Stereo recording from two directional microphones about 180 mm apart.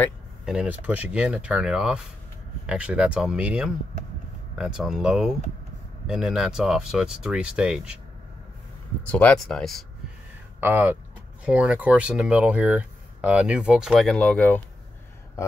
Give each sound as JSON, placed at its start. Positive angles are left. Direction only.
{"t": 0.5, "sound": "speech", "side_deg": -5}
{"t": 9.0, "sound": "speech", "side_deg": 5}
{"t": 10.6, "sound": "speech", "side_deg": -10}